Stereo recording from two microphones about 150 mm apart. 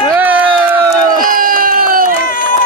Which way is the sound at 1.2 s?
70° right (ahead or behind).